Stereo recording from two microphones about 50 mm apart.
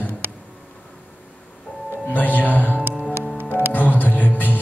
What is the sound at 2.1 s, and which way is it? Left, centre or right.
Music, left.